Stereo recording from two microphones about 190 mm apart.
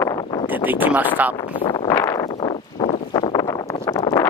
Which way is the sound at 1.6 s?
25° left (ahead or behind).